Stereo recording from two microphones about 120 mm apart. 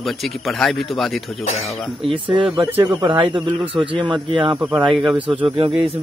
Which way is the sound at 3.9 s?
45° right (ahead or behind).